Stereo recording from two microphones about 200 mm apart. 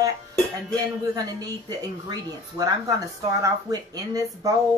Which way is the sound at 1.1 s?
20° right (ahead or behind).